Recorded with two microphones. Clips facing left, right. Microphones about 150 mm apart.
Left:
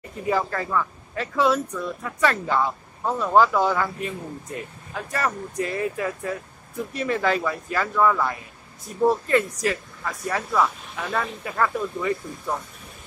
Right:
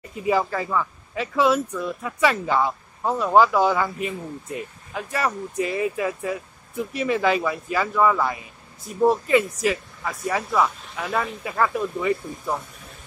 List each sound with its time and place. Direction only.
0.1 s speech: 10° right (ahead or behind)